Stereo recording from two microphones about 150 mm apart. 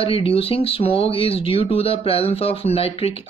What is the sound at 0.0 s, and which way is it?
Speech, 40° left (ahead or behind).